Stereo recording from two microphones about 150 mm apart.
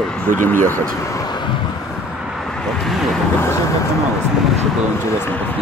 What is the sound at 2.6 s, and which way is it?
Vehicle, centre (ahead or behind).